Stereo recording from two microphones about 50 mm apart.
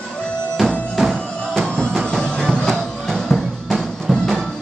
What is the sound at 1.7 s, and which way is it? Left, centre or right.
Music, centre.